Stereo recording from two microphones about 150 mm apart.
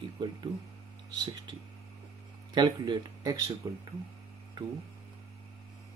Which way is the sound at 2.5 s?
30° right (ahead or behind).